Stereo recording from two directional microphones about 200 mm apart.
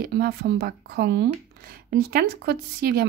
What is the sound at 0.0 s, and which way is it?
Speech, 50° right (ahead or behind).